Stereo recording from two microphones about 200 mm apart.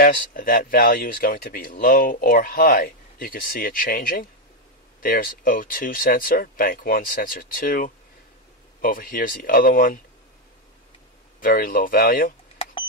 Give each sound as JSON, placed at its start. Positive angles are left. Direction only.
{"t": 0.0, "sound": "speech", "side_deg": 45}
{"t": 11.4, "sound": "speech", "side_deg": 45}